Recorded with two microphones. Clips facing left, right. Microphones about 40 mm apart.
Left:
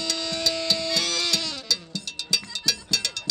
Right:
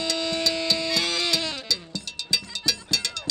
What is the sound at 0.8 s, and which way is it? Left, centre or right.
Music, centre.